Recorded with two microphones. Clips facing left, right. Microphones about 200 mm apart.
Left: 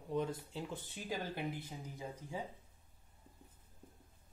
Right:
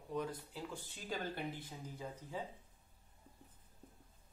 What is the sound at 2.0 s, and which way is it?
Speech, 10° left (ahead or behind).